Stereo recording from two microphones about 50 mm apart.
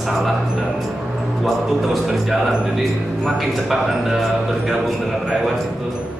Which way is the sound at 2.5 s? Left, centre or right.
Centre.